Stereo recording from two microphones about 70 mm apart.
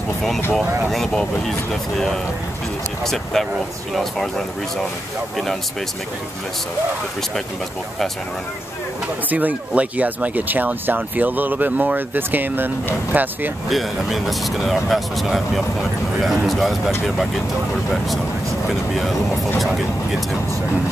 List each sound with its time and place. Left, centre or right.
0.6 s speech: centre
9.3 s speech: right
13.7 s speech: centre
18.7 s speech: centre